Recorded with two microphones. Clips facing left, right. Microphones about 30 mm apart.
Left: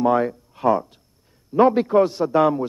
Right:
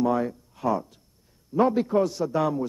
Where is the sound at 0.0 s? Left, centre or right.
Left.